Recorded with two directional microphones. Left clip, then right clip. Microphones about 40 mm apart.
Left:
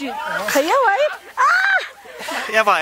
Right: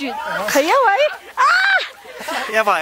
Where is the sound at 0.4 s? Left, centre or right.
Centre.